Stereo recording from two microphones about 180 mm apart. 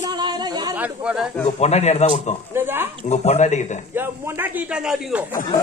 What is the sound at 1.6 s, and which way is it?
Speech, 35° left (ahead or behind).